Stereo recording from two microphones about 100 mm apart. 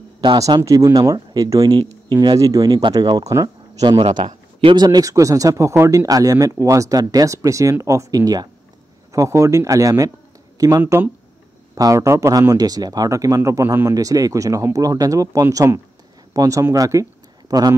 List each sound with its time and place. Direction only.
0.2 s a man's voice: 50° right (ahead or behind)
0.6 s speech: 30° right (ahead or behind)